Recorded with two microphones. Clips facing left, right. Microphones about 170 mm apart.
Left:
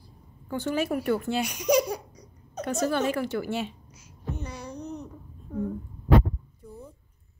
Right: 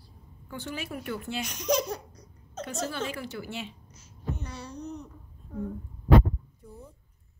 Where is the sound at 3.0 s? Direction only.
55° left (ahead or behind).